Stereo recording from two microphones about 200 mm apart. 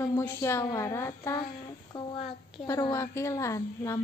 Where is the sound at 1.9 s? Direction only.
25° left (ahead or behind).